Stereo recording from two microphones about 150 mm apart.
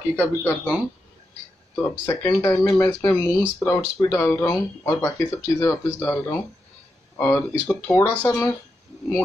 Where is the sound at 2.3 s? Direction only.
15° left (ahead or behind).